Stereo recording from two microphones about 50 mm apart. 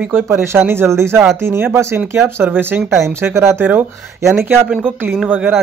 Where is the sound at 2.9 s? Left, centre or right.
Right.